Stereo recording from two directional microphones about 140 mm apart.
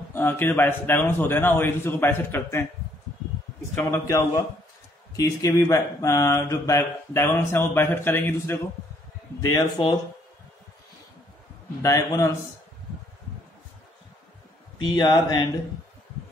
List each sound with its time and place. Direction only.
0.1 s a man's voice: 15° left (ahead or behind)
3.7 s speech: 20° left (ahead or behind)
9.4 s speech: 25° left (ahead or behind)
11.8 s speech: 25° left (ahead or behind)
14.8 s speech: 30° left (ahead or behind)